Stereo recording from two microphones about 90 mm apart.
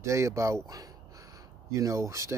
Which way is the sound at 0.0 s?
35° right (ahead or behind).